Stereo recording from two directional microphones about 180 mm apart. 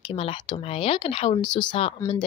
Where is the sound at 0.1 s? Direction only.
30° left (ahead or behind).